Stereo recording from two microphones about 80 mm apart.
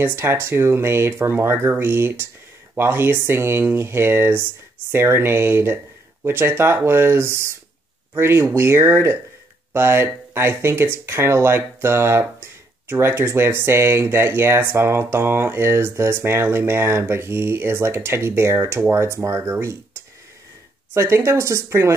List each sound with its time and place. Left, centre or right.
0.0 s speech: right
20.9 s speech: right